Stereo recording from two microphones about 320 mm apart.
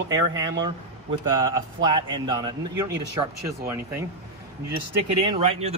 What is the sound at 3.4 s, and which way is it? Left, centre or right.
Speech, centre.